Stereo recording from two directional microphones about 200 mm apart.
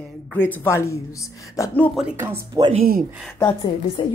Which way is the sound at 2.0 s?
10° right (ahead or behind).